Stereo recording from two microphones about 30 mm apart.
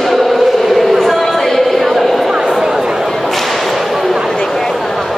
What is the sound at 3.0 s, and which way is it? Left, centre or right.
Whip, centre.